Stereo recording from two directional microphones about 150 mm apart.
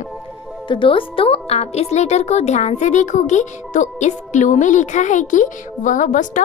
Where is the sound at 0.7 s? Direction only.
35° left (ahead or behind).